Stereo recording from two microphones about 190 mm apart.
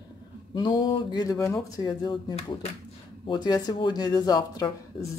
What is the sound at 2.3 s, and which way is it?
Speech, 35° left (ahead or behind).